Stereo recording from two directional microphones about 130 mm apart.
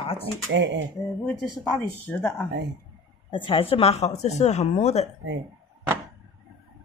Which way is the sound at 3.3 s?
40° left (ahead or behind).